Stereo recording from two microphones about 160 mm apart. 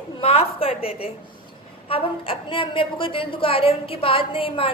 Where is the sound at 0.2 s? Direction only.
35° left (ahead or behind).